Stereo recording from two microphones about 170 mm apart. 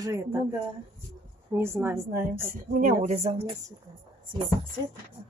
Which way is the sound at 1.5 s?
15° right (ahead or behind).